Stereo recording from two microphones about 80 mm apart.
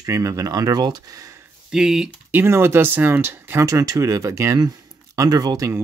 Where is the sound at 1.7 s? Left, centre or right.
Centre.